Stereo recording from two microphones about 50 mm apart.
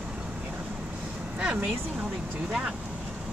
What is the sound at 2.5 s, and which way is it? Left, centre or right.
Speech, centre.